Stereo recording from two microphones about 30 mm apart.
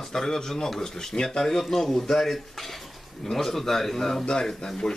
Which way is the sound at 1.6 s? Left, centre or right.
Centre.